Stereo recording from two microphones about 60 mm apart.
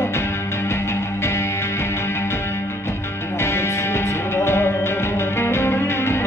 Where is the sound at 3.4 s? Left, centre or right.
Left.